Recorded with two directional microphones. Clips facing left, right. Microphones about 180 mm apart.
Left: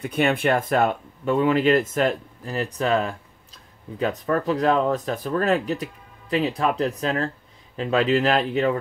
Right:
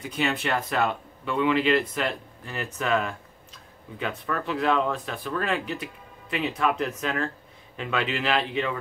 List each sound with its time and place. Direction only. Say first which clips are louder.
0.0 s speech: left 6 dB; 55° left (ahead or behind)